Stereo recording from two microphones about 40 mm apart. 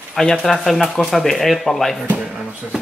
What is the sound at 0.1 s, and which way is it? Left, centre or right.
Speech, centre.